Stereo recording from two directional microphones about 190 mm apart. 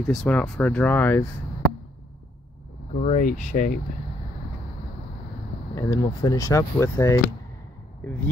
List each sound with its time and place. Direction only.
0.1 s speech: 5° left (ahead or behind)
2.9 s speech: 35° left (ahead or behind)
5.8 s speech: 15° left (ahead or behind)